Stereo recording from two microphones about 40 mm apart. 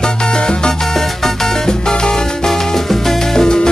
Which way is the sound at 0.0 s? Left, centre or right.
Centre.